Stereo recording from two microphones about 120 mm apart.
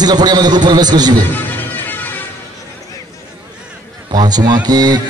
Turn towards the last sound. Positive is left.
turn(degrees=-35)  # may be behind; listen again after turning